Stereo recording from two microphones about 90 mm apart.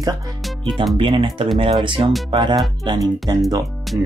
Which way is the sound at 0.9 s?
70° right (ahead or behind).